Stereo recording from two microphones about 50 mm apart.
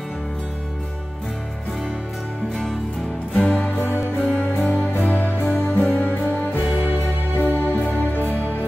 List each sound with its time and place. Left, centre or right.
3.3 s music: centre
5.0 s music: left